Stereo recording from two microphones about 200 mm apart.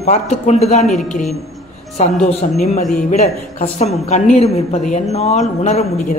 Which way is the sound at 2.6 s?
35° left (ahead or behind).